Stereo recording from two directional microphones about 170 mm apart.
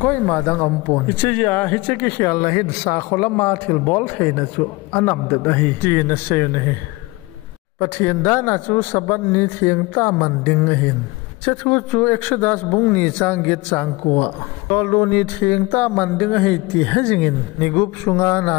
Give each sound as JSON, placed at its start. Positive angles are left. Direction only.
{"t": 0.0, "sound": "speech", "side_deg": 10}
{"t": 7.8, "sound": "speech", "side_deg": 15}